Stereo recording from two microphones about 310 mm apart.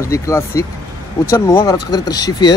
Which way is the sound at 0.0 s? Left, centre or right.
Centre.